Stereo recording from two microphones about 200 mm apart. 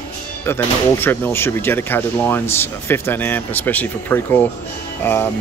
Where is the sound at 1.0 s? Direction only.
10° left (ahead or behind).